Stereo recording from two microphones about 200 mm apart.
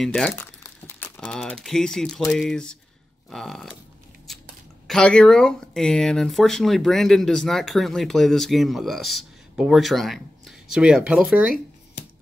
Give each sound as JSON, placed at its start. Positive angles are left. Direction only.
{"t": 0.0, "sound": "speech", "side_deg": 0}
{"t": 4.3, "sound": "a sound", "side_deg": 0}
{"t": 4.8, "sound": "speech", "side_deg": 5}